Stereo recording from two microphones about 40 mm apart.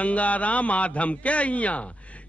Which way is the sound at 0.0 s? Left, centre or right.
Left.